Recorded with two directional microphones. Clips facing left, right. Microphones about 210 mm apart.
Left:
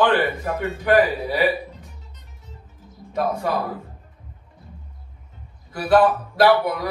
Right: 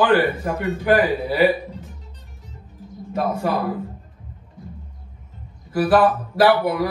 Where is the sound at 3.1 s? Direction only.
5° right (ahead or behind).